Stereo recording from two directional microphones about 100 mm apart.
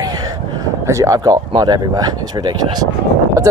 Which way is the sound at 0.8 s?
30° right (ahead or behind).